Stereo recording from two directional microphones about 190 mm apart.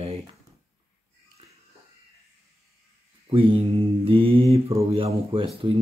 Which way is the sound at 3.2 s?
30° right (ahead or behind).